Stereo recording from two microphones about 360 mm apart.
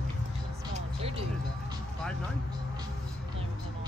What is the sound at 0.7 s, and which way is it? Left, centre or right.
Music, centre.